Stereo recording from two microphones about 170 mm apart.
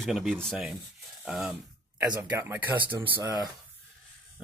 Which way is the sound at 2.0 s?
20° right (ahead or behind).